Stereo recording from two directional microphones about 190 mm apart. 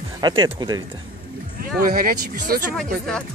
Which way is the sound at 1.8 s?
50° right (ahead or behind).